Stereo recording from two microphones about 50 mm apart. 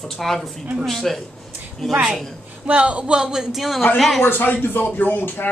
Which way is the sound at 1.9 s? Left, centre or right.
Centre.